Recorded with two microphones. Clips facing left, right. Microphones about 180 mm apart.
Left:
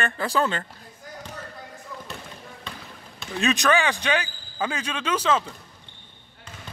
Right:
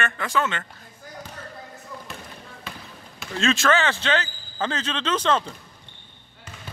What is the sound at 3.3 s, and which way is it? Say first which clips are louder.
Speech: even; 15° left (ahead or behind).